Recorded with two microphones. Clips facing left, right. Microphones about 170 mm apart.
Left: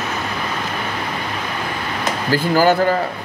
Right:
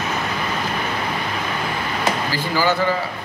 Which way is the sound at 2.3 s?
50° left (ahead or behind).